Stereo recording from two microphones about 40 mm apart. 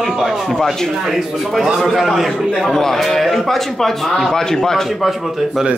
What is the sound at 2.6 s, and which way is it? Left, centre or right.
A man's voice, centre.